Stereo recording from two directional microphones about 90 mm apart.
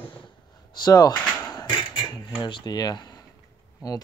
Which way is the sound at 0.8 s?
50° left (ahead or behind).